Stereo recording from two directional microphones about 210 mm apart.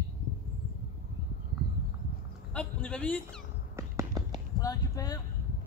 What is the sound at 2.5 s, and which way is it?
Speech, 5° left (ahead or behind).